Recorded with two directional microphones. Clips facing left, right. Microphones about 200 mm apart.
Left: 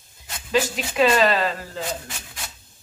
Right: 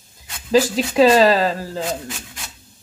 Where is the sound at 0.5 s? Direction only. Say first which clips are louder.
Right 7 dB; 35° right (ahead or behind).